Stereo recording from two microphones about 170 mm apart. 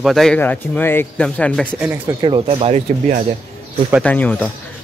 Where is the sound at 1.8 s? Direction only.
10° right (ahead or behind).